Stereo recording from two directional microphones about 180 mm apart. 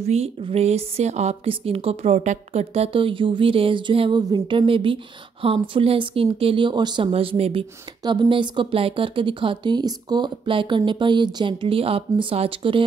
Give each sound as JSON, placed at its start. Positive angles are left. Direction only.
{"t": 0.0, "sound": "a woman's voice", "side_deg": -35}